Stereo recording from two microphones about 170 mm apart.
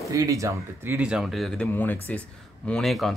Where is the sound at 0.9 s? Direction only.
5° right (ahead or behind).